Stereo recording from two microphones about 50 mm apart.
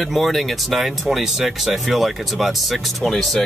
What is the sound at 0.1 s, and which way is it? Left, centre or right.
Speech, centre.